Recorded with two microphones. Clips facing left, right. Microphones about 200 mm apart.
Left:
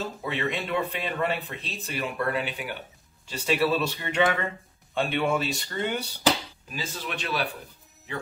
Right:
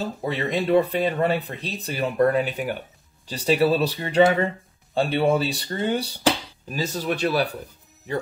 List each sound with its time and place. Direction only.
0.0 s speech: 40° right (ahead or behind)